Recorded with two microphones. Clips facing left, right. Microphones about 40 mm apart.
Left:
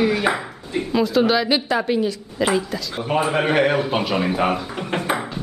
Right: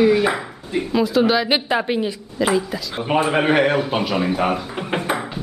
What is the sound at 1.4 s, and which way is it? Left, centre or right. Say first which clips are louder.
Speech: even; right.